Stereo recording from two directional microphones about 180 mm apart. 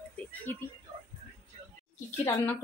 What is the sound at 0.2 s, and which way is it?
Music, 10° left (ahead or behind).